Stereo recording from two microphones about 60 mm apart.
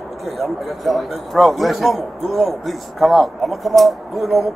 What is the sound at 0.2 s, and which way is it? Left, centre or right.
A man's voice, centre.